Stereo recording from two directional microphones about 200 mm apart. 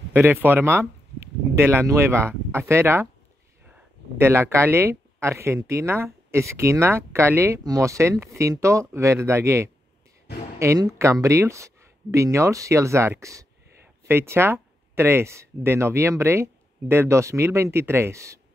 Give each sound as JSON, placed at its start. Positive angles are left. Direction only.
{"t": 0.1, "sound": "speech", "side_deg": -10}
{"t": 10.3, "sound": "a sound", "side_deg": 55}
{"t": 10.6, "sound": "speech", "side_deg": -15}